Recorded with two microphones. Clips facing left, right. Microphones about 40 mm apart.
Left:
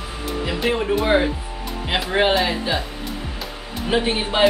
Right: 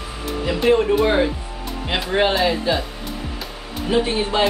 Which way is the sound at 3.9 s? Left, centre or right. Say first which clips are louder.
Right 1 dB; left.